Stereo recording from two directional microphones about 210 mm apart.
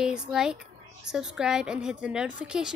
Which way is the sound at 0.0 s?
5° right (ahead or behind).